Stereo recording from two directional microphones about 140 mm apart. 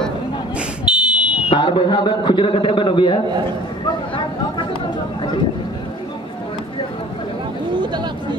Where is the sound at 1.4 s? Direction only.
35° left (ahead or behind).